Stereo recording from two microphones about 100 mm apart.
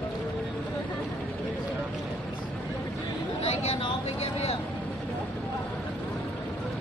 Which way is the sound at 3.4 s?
90° left.